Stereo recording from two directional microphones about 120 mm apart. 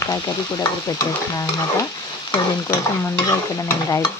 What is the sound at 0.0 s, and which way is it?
Stir, 30° left (ahead or behind).